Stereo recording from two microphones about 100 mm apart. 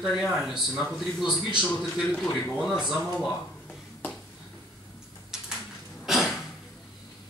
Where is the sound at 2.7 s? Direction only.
5° right (ahead or behind).